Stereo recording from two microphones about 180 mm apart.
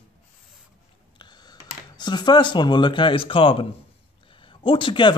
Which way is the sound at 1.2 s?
25° left (ahead or behind).